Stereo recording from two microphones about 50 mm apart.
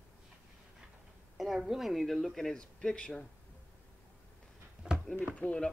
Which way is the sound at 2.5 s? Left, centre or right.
Centre.